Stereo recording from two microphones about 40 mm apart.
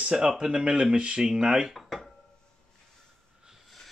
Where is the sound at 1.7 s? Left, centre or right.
Centre.